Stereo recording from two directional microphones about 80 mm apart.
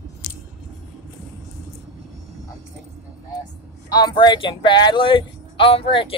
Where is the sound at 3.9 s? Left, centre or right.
Left.